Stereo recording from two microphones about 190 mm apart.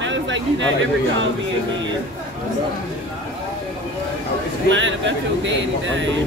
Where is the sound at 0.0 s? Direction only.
75° right (ahead or behind).